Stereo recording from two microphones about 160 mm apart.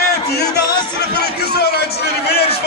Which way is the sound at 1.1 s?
85° left.